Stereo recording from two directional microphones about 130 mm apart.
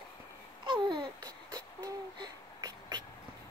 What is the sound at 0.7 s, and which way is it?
Babbling, 35° right (ahead or behind).